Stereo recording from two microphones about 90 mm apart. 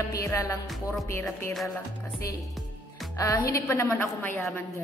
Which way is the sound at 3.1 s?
35° left (ahead or behind).